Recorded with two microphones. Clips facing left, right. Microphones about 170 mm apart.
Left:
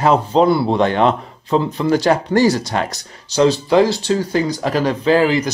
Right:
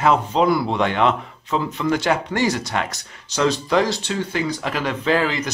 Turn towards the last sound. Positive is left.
turn(degrees=30)  # may be behind; listen again after turning